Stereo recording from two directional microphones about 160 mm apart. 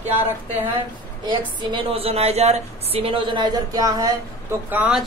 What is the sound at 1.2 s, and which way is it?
A woman's voice, 35° right (ahead or behind).